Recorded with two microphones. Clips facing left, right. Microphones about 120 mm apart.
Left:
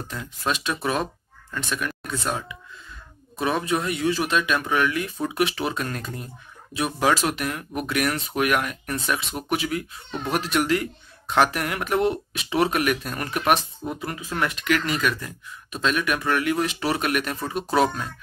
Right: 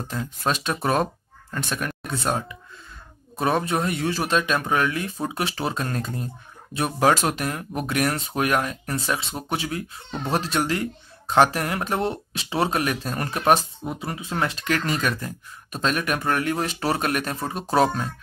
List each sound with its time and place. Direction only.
0.1 s speech: 40° right (ahead or behind)